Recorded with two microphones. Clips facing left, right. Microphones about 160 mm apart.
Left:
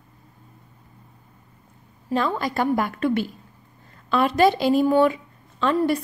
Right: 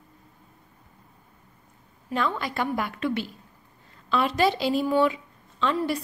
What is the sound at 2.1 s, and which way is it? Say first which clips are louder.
Speech: left 4 dB; 40° left (ahead or behind).